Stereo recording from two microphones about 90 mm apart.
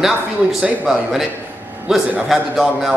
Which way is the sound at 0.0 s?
5° right (ahead or behind).